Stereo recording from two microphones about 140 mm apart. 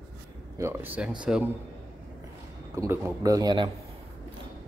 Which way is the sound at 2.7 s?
20° right (ahead or behind).